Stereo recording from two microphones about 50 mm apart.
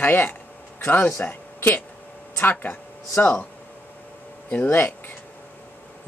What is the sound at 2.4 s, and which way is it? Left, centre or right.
Speech, left.